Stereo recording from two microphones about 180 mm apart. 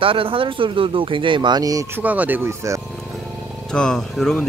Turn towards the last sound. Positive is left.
turn(degrees=5)  # may be behind; listen again after turning